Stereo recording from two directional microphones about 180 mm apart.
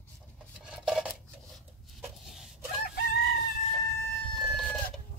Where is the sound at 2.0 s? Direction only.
Centre (ahead or behind).